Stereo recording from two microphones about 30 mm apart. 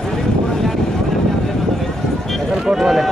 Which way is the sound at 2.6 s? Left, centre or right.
Centre.